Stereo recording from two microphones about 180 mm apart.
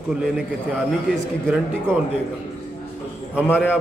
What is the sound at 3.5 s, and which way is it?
Speech, 10° left (ahead or behind).